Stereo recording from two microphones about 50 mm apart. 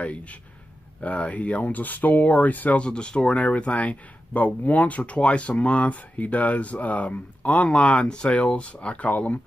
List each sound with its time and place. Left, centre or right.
0.0 s speech: left
2.8 s speech: centre